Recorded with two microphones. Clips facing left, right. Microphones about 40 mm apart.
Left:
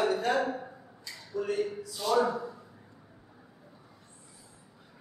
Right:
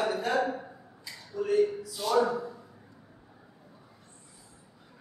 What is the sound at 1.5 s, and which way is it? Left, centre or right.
Speech, centre.